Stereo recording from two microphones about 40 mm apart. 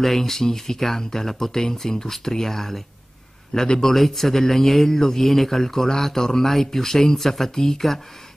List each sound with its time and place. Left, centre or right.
0.0 s speech: centre
3.9 s speech: centre